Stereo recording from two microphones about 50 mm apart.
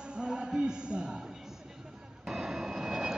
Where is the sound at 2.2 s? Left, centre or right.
Centre.